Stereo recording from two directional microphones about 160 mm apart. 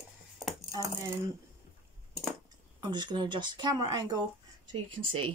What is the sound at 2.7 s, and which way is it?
Speech, 25° right (ahead or behind).